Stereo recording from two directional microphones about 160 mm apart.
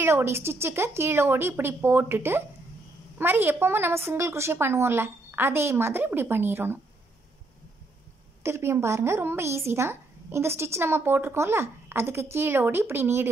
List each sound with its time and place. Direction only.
0.0 s a woman's voice: 15° right (ahead or behind)
8.4 s a woman's voice: 15° right (ahead or behind)